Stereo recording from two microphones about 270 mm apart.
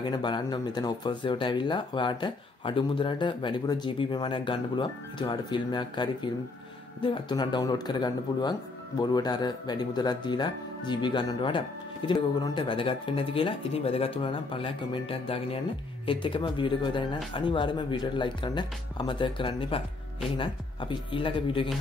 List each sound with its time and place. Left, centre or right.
0.0 s speech: centre